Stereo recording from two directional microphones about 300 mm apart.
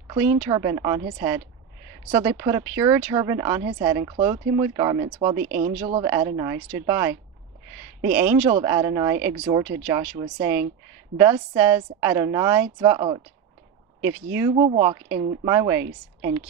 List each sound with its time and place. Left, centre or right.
0.1 s speech: centre
5.4 s speech: right
6.2 s speech: centre
14.5 s speech: right